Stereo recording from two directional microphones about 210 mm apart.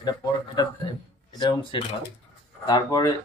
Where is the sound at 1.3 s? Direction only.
20° left (ahead or behind).